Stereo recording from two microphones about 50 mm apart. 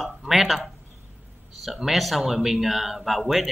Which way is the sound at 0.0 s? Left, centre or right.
Centre.